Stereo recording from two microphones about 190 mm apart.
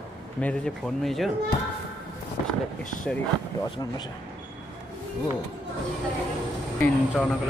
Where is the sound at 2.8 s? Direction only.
40° left (ahead or behind).